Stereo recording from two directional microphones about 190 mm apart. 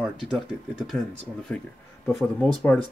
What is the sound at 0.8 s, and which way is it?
Speech, centre (ahead or behind).